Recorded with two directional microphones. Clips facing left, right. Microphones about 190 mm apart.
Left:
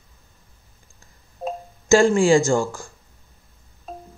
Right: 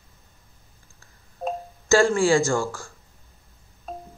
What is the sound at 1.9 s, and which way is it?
Speech, 20° left (ahead or behind).